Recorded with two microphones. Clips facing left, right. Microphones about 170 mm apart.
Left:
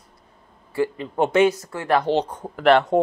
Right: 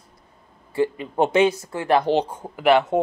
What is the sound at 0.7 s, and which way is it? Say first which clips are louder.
Speech: right 1 dB; 20° right (ahead or behind).